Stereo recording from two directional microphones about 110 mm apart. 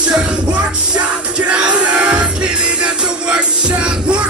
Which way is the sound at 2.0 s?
10° right (ahead or behind).